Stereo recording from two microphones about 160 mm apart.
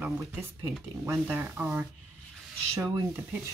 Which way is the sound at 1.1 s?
15° right (ahead or behind).